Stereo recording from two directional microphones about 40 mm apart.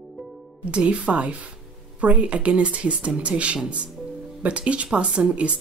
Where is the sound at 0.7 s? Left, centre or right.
Right.